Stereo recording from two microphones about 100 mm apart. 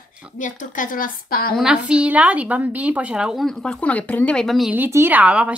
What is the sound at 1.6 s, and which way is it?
A woman's voice, 10° right (ahead or behind).